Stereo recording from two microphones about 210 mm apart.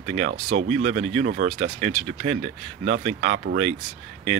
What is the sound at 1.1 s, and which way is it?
Speech, 50° right (ahead or behind).